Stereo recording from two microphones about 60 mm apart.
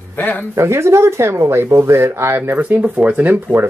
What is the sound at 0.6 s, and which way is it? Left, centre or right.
Speech, right.